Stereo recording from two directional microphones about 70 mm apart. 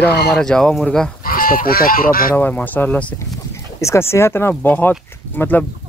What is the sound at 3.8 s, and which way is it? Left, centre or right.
Speech, left.